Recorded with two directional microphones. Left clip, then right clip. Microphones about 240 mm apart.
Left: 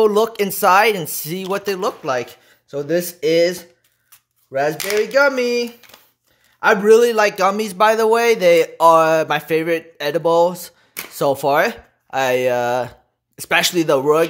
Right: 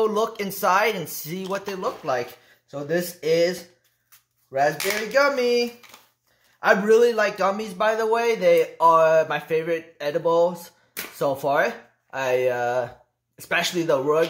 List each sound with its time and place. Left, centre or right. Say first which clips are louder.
0.0 s a man's voice: left 7 dB; left